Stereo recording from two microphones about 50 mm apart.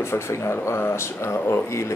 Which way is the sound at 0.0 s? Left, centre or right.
Left.